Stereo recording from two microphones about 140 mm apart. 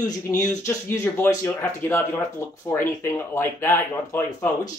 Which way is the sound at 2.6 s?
20° left (ahead or behind).